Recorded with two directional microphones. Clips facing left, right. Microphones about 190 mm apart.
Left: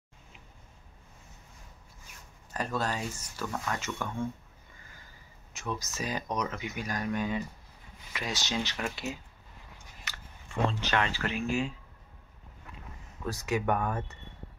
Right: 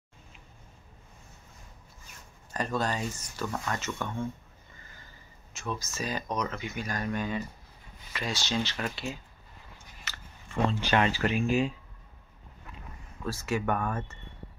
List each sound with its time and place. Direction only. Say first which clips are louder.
2.5 s speech: right 2 dB; 5° left (ahead or behind)
5.5 s speech: even; 15° left (ahead or behind)
10.7 s speech: right 4 dB; 10° right (ahead or behind)
13.2 s speech: even; 15° left (ahead or behind)